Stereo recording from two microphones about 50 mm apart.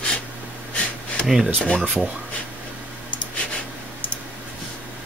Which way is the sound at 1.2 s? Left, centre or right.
Centre.